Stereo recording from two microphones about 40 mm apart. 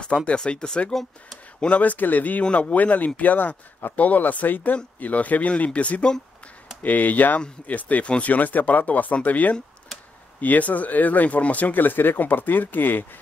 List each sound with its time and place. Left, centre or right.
0.0 s speech: left
1.6 s speech: left
2.4 s speech: left
2.7 s speech: left
6.8 s speech: left